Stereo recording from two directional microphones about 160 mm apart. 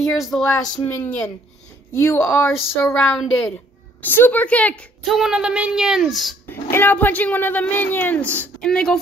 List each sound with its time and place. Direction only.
0.0 s a woman's voice: centre (ahead or behind)
0.8 s a woman's voice: 10° left (ahead or behind)
6.5 s a woman's voice: 15° left (ahead or behind)